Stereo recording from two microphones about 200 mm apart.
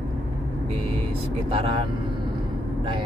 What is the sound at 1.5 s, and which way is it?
Speech, 25° right (ahead or behind).